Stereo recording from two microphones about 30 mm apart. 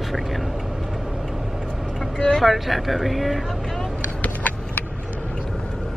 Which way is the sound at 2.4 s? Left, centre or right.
Centre.